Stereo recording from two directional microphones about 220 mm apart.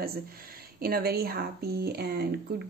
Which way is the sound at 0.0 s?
45° right (ahead or behind).